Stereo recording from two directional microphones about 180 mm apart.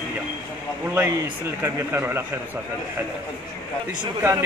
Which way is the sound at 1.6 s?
15° right (ahead or behind).